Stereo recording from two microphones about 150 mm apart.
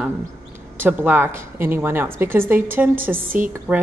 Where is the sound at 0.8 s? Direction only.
15° right (ahead or behind).